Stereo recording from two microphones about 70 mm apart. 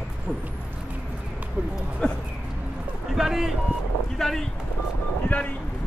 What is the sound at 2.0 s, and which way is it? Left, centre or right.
Speech, centre.